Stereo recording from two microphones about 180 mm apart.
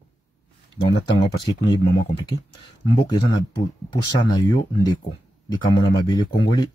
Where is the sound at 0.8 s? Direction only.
25° left (ahead or behind).